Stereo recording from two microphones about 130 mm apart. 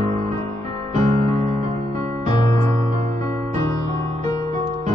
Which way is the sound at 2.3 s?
30° left (ahead or behind).